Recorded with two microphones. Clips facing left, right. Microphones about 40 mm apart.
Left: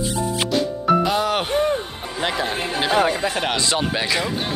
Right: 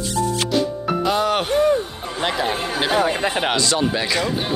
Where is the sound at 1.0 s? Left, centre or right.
Centre.